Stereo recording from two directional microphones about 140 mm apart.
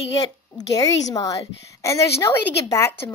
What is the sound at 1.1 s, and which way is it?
Speech, 25° left (ahead or behind).